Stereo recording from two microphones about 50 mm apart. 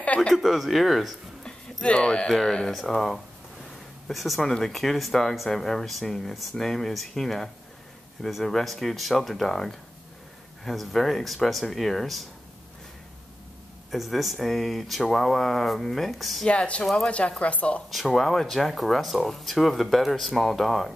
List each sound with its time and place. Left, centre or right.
0.0 s a sound: left
0.3 s speech: centre
1.4 s a sound: centre
2.2 s speech: centre
2.7 s speech: centre
13.9 s speech: centre
16.4 s speech: left
17.9 s speech: centre